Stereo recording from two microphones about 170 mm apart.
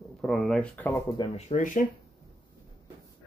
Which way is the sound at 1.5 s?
50° left (ahead or behind).